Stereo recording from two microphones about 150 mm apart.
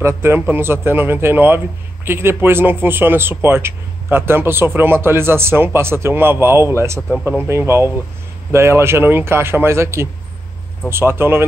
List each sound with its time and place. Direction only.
0.0 s a man's voice: 15° right (ahead or behind)